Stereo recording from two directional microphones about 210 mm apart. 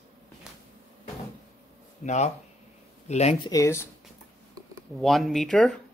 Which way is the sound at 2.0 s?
35° left (ahead or behind).